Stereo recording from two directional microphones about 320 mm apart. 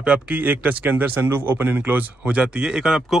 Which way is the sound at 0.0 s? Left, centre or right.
Centre.